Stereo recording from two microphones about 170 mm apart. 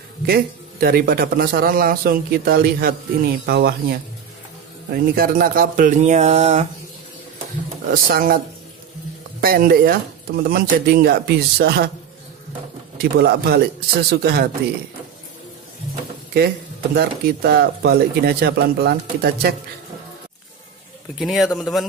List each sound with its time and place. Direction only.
0.3 s a man's voice: 60° right (ahead or behind); by 6.7 s 40° right (ahead or behind)
7.9 s a man's voice: 60° right (ahead or behind)
9.4 s a man's voice: 60° right (ahead or behind)
13.0 s speech: 70° right (ahead or behind)
16.3 s speech: 70° right (ahead or behind)
21.2 s speech: centre (ahead or behind)